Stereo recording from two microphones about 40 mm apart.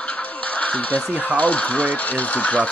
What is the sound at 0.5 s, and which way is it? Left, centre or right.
Music, left.